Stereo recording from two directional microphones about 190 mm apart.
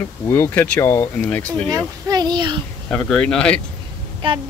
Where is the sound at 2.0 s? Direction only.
20° right (ahead or behind).